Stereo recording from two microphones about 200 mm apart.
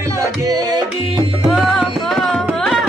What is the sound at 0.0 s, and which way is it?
Music, 15° right (ahead or behind).